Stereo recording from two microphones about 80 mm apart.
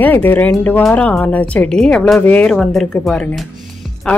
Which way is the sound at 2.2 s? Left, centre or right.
Centre.